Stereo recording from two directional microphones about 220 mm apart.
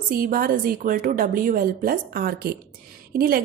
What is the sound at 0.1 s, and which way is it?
A woman's voice, 40° right (ahead or behind).